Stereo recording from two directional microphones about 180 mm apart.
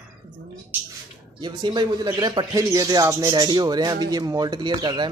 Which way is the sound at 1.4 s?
25° right (ahead or behind).